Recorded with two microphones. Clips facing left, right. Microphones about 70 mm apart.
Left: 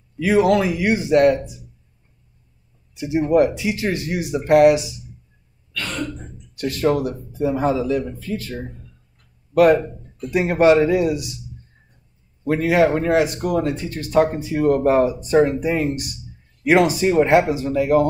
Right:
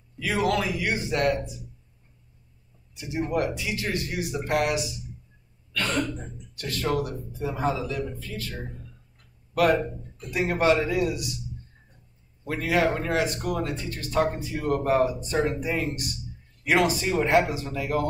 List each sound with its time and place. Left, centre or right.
0.2 s speech: left
2.9 s speech: left
6.6 s speech: left
9.6 s speech: left
12.4 s speech: left